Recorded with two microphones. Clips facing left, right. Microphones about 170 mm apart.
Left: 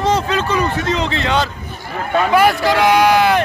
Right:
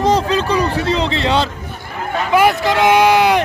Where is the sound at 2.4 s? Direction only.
20° right (ahead or behind).